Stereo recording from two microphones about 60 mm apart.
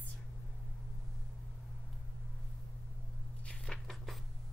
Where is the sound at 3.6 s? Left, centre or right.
Centre.